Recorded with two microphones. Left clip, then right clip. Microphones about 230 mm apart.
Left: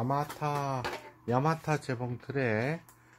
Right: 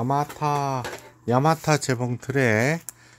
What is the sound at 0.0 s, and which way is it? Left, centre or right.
Speech, right.